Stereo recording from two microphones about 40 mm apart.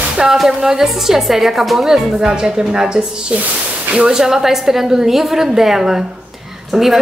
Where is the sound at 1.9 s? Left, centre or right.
Centre.